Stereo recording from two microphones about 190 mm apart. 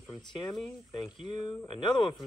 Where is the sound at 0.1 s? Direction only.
25° left (ahead or behind).